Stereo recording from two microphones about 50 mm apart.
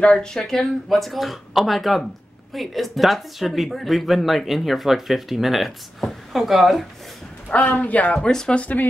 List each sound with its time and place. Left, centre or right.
0.0 s speech: centre
7.4 s a man's voice: left
8.2 s speech: centre
8.5 s speech: left